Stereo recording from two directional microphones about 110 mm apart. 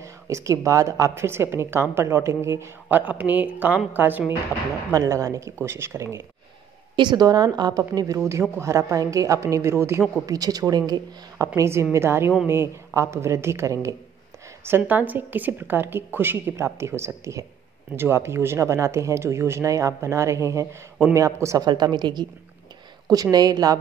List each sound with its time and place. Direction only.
0.0 s a woman's voice: 30° right (ahead or behind)
4.9 s a woman's voice: 30° right (ahead or behind)
7.0 s a woman's voice: 40° right (ahead or behind)
21.6 s a woman's voice: 40° right (ahead or behind)
23.3 s a woman's voice: 35° right (ahead or behind)